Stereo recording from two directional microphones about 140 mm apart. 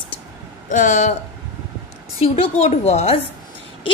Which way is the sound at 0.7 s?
65° left (ahead or behind).